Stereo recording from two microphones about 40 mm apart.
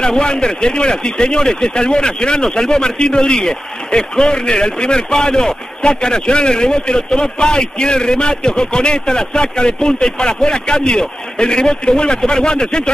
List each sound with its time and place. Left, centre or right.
0.0 s speech: left